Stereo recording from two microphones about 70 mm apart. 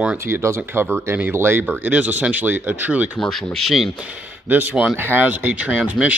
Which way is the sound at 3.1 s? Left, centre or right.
Centre.